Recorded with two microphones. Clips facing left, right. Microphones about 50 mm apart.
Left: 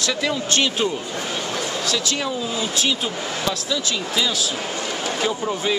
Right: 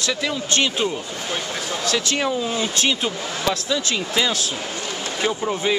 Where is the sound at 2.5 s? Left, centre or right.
Right.